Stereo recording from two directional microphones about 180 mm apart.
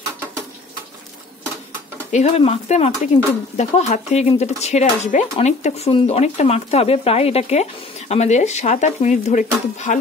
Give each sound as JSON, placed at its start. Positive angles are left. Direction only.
{"t": 2.0, "sound": "speech", "side_deg": 40}